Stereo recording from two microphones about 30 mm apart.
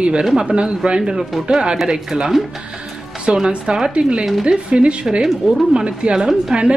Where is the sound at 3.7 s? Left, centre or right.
Right.